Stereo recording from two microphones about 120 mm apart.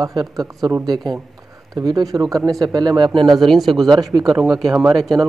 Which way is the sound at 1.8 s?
30° right (ahead or behind).